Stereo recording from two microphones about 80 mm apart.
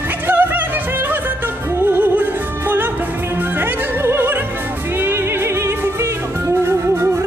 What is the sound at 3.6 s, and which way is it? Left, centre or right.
Opera, right.